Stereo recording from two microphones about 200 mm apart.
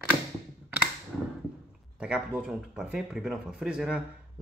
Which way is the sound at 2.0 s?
5° right (ahead or behind).